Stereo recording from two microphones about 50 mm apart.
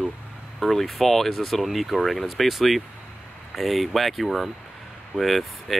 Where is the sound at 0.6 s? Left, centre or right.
Centre.